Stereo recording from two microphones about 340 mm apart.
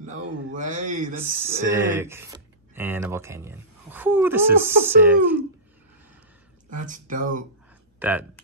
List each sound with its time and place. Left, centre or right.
0.0 s a sound: right
1.4 s speech: centre
6.7 s speech: right
8.0 s speech: centre